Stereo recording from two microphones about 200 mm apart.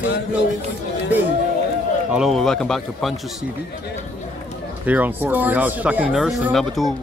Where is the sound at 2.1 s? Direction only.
Centre (ahead or behind).